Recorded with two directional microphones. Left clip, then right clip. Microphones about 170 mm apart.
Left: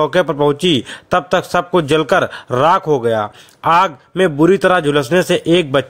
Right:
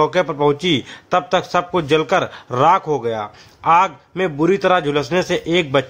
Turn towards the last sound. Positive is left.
turn(degrees=30)  # may be behind; listen again after turning